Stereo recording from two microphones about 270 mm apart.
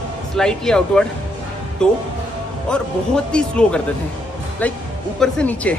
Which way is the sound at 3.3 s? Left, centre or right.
Centre.